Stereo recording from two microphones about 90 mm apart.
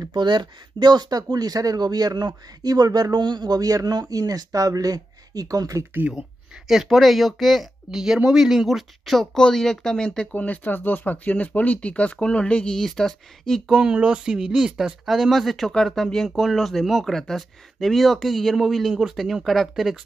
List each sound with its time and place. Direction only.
0.1 s speech: 55° right (ahead or behind); by 5.9 s 40° right (ahead or behind)
5.9 s speech: 15° right (ahead or behind)
6.7 s speech: centre (ahead or behind)
13.7 s speech: 10° right (ahead or behind)